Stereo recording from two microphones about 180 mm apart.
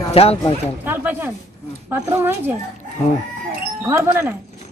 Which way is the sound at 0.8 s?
10° right (ahead or behind).